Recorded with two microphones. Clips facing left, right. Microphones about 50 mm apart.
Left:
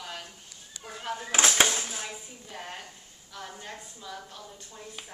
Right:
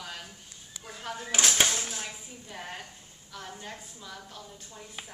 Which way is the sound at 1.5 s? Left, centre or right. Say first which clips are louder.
Left 2 dB; centre.